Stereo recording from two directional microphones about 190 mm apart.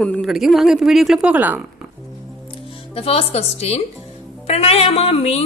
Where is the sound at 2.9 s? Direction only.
30° left (ahead or behind).